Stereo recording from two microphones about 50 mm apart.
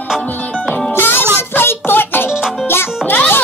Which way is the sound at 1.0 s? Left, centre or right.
Left.